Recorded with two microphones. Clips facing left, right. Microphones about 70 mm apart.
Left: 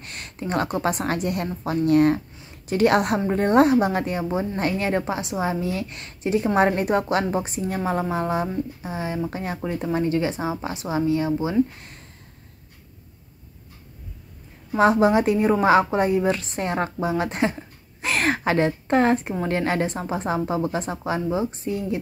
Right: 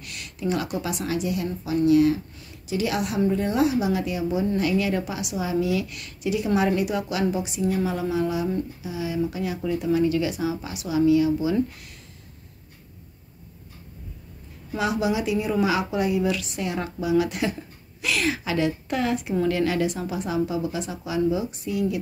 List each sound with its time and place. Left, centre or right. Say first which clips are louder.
0.0 s a woman's voice: right 3 dB; left
14.8 s a woman's voice: left 7 dB; left